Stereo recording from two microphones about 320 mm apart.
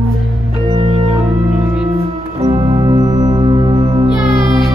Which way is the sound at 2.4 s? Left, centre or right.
Centre.